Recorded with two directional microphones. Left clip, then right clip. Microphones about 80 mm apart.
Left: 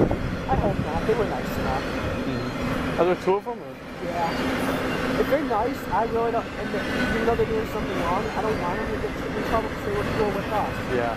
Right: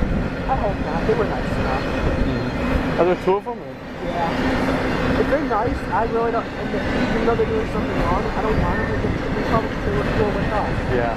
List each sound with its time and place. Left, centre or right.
3.0 s speech: centre
5.5 s speech: left
10.1 s speech: left